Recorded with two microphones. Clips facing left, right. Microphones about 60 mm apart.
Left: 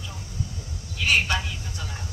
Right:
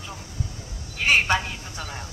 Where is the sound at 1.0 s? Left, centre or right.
Right.